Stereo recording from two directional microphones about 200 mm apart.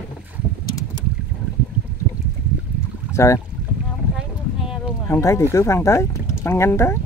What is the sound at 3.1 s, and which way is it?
Speech, 15° left (ahead or behind).